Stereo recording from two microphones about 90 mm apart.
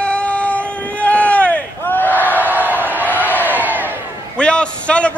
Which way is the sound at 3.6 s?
20° right (ahead or behind).